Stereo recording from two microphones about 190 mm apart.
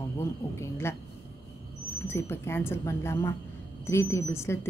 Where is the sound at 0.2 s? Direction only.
15° left (ahead or behind).